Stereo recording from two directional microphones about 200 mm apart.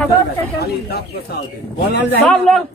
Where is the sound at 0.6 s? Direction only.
50° left (ahead or behind).